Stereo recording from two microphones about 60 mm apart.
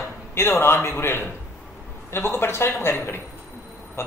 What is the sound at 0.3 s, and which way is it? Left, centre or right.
Speech, left.